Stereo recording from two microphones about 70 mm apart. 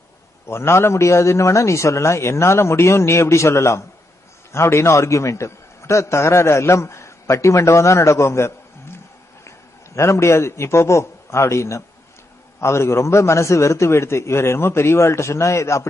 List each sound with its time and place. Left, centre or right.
0.5 s a man's voice: left